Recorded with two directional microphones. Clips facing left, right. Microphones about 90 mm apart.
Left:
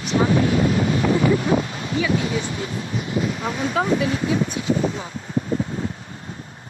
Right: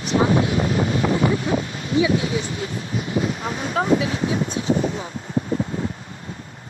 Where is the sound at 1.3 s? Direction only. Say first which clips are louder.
Left 2 dB; 35° left (ahead or behind).